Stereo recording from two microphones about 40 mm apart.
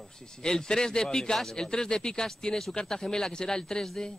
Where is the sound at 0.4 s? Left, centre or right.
Centre.